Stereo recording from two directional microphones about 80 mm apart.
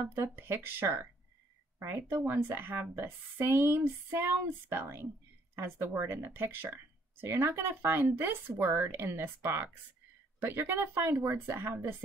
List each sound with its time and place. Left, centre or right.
0.1 s speech: right